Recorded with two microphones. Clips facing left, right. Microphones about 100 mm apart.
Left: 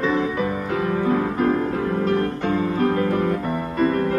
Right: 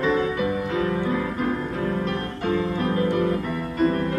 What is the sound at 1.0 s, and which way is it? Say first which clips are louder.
Music: left 4 dB; 40° left (ahead or behind).